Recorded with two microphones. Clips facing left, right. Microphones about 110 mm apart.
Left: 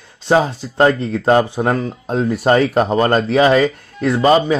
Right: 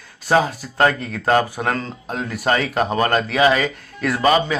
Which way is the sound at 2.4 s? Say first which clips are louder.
Left 5 dB; 35° left (ahead or behind).